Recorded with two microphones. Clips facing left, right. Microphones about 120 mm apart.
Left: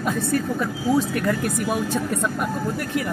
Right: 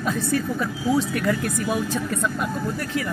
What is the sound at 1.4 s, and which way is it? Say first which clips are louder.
Speech: left 1 dB; 15° left (ahead or behind).